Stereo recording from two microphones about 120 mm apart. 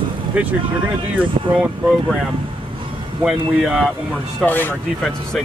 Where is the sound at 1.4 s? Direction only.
50° right (ahead or behind).